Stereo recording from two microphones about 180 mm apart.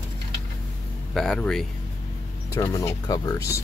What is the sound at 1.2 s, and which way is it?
Speech, 5° left (ahead or behind).